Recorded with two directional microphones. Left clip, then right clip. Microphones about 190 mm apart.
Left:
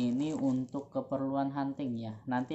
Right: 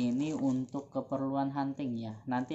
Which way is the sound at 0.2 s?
Centre (ahead or behind).